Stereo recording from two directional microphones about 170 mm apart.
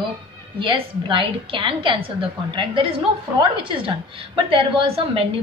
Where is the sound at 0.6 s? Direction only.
30° right (ahead or behind).